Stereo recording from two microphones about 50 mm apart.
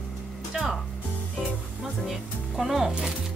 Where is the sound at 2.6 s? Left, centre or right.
Centre.